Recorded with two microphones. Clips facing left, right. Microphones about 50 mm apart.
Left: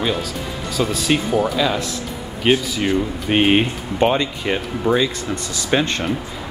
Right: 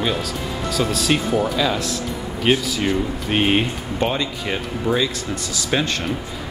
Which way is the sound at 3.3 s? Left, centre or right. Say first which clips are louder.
Left 3 dB; centre.